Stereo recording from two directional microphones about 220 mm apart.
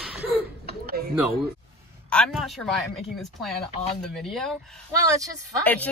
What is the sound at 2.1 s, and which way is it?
Speech, centre (ahead or behind).